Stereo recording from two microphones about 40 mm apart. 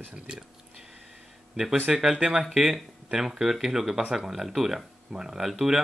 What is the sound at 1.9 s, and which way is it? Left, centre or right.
Speech, centre.